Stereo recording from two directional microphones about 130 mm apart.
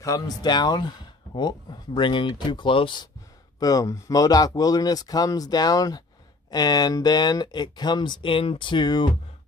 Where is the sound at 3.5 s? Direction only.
30° left (ahead or behind).